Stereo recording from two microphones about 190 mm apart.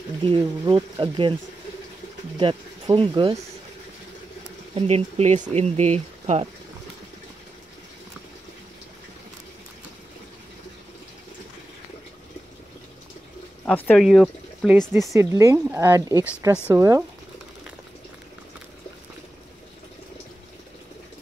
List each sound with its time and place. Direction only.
0.3 s speech: 25° right (ahead or behind)
2.3 s speech: 25° right (ahead or behind)
4.7 s speech: 35° right (ahead or behind)
13.7 s speech: 5° left (ahead or behind)
15.1 s speech: 15° right (ahead or behind)